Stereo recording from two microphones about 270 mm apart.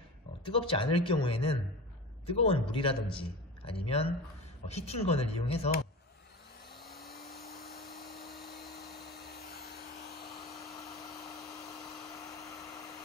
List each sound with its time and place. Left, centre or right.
0.5 s a man's voice: centre
6.7 s vacuum cleaner: left
10.6 s hair dryer: centre
12.4 s a sound: centre